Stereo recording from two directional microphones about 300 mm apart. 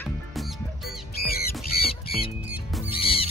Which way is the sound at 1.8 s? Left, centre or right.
Centre.